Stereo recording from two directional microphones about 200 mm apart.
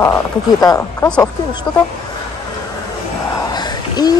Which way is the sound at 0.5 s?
15° left (ahead or behind).